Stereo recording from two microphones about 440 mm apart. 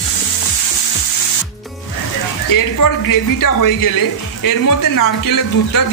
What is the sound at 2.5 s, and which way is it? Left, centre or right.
Speech, left.